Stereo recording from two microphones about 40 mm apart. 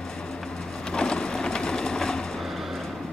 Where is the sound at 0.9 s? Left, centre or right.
Left.